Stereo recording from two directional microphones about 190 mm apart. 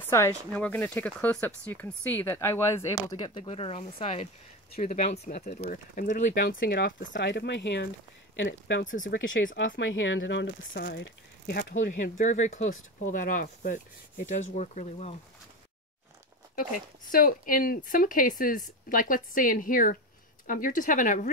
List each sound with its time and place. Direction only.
0.1 s a woman's voice: 10° left (ahead or behind); by 8.9 s 70° left (ahead or behind)
9.6 s speech: 90° left
10.7 s speech: 60° left (ahead or behind); by 15.1 s 40° left (ahead or behind)
17.1 s a woman's voice: 50° left (ahead or behind)